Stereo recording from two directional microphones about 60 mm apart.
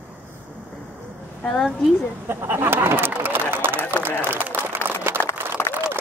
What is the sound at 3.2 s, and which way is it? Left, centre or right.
Run, right.